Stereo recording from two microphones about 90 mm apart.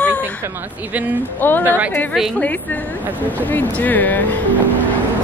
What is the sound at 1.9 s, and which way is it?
A woman's voice, 20° left (ahead or behind).